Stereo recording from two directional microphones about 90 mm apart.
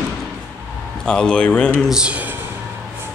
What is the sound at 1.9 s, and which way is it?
Speech, 10° right (ahead or behind).